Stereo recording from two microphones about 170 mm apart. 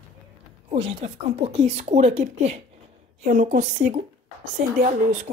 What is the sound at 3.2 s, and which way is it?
A woman's voice, 50° right (ahead or behind).